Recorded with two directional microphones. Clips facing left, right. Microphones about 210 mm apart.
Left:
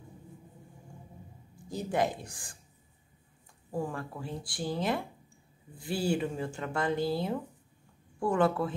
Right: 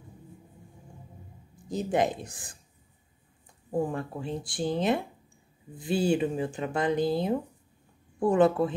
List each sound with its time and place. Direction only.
1.7 s speech: 20° right (ahead or behind)
3.7 s speech: 20° right (ahead or behind)